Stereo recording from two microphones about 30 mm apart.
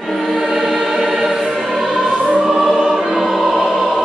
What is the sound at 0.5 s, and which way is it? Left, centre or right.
Choir, centre.